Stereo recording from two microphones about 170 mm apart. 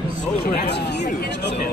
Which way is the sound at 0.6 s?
90° left.